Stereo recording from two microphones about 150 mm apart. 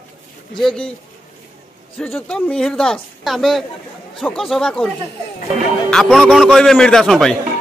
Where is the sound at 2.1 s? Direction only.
5° left (ahead or behind).